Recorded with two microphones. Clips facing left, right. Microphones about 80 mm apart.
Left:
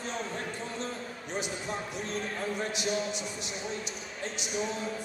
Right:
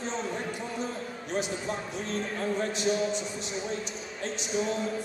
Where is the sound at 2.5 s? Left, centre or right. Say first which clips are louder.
Right 5 dB; centre.